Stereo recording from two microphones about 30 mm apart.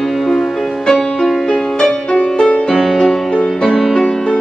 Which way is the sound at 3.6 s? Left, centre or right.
Centre.